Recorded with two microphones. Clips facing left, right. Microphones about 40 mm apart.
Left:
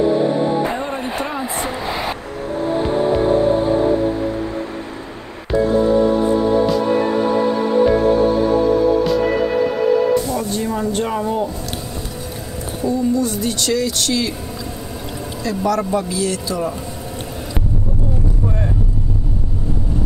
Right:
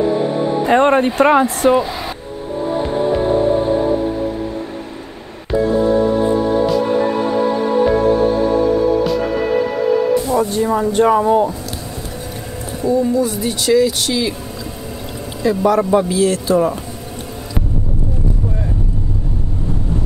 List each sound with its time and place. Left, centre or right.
0.7 s speech: right
1.4 s speech: centre
1.8 s a sound: centre
10.2 s speech: centre
13.1 s speech: centre
15.4 s speech: right